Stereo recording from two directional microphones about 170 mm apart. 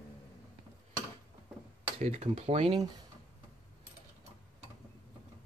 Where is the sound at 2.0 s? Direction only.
40° right (ahead or behind).